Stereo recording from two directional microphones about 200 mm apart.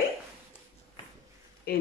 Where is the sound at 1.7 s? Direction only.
55° left (ahead or behind).